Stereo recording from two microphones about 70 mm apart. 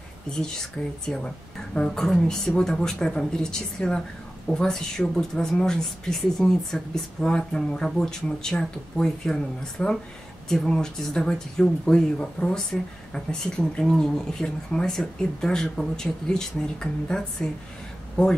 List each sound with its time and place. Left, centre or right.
1.0 s speech: centre